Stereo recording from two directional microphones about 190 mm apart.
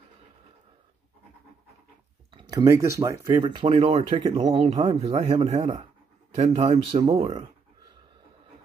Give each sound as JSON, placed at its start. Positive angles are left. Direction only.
{"t": 2.3, "sound": "speech", "side_deg": -20}
{"t": 3.7, "sound": "speech", "side_deg": -35}